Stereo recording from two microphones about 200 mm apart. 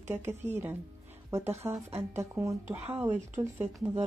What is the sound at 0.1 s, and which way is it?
Speech, 10° right (ahead or behind).